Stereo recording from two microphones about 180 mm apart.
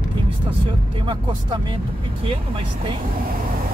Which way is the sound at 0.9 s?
25° right (ahead or behind).